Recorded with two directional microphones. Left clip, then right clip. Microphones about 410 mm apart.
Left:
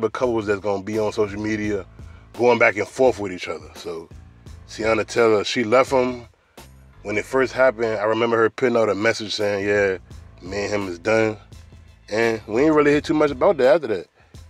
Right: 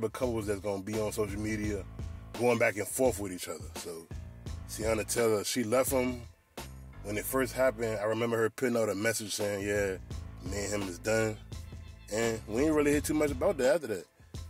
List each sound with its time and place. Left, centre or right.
0.0 s speech: right